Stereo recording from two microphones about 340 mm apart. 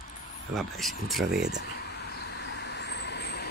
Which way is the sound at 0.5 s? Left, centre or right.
Centre.